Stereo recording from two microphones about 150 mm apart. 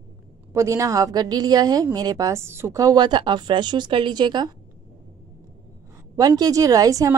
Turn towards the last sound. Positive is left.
turn(degrees=-25)  # may be behind; listen again after turning